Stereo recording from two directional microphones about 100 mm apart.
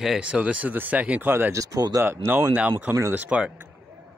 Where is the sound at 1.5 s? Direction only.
35° right (ahead or behind).